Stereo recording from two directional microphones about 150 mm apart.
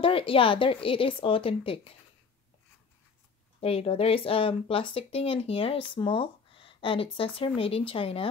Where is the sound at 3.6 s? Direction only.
40° left (ahead or behind).